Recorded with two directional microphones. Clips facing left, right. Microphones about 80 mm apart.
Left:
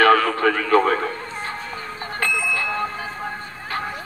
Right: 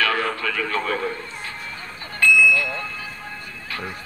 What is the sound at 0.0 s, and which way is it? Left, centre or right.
Radio, left.